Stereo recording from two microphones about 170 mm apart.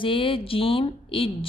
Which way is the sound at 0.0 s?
30° left (ahead or behind).